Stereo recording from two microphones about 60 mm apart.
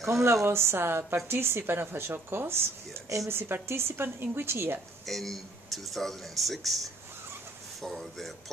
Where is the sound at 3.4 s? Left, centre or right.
Right.